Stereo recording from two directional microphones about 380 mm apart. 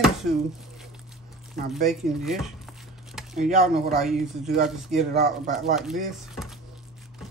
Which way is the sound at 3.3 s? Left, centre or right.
Centre.